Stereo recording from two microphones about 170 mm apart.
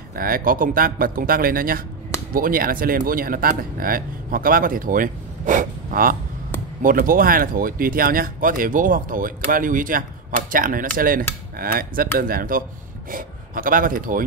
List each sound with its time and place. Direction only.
0.1 s speech: 60° right (ahead or behind)